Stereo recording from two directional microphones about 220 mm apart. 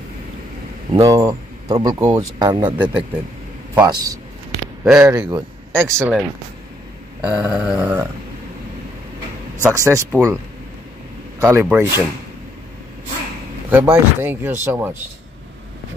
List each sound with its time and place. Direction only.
0.9 s speech: 15° right (ahead or behind)
3.7 s speech: 15° right (ahead or behind)
4.8 s a sound: 5° right (ahead or behind)
5.2 s speech: 10° right (ahead or behind)
7.2 s a sound: 5° right (ahead or behind)
9.6 s speech: 10° right (ahead or behind)
11.4 s speech: 10° right (ahead or behind)
13.7 s speech: 5° right (ahead or behind)